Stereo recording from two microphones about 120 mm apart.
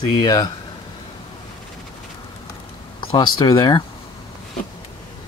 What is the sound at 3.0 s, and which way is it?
Speech, 40° left (ahead or behind).